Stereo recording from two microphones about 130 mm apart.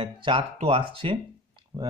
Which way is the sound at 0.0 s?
45° right (ahead or behind).